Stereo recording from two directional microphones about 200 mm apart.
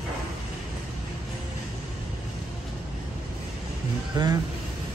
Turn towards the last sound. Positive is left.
turn(degrees=-20)  # may be behind; listen again after turning